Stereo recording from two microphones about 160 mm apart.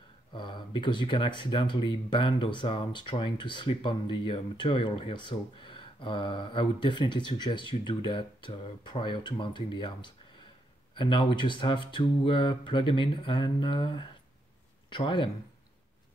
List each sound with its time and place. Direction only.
0.3 s speech: 30° left (ahead or behind)